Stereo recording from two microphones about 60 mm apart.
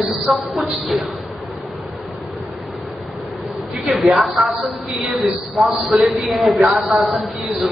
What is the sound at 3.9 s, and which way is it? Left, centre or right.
A woman's voice, centre.